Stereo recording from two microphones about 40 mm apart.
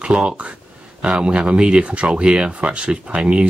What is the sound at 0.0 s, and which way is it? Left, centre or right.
Speech, right.